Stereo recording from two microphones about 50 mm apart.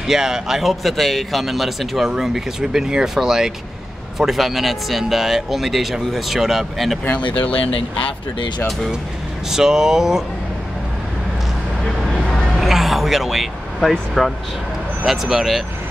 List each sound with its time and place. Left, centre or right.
0.0 s a man's voice: centre
7.1 s speech: left
9.5 s a man's voice: centre
12.5 s vehicle: centre
15.0 s a man's voice: centre